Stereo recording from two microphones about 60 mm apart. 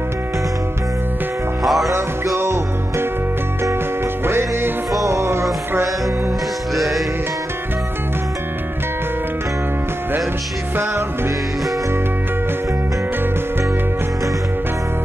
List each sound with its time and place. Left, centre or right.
1.6 s music: centre
2.3 s music: right
4.2 s music: right
5.0 s music: right
6.7 s music: centre
10.8 s music: right